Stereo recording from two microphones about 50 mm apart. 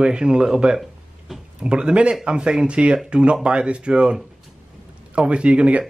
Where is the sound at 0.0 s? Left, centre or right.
Centre.